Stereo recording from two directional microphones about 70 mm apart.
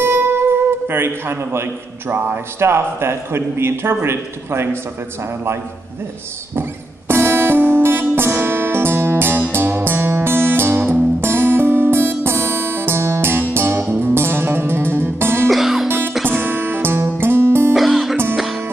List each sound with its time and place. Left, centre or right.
0.0 s music: right
2.6 s a man's voice: right
7.1 s music: right
15.5 s music: centre
16.3 s music: right
17.7 s music: centre